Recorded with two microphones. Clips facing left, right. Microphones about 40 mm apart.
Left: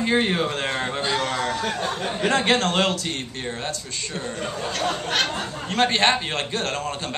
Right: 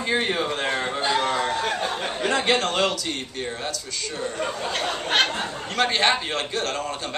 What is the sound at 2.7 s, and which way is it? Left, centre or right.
A man's voice, left.